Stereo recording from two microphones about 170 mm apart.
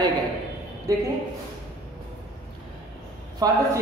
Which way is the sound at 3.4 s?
20° right (ahead or behind).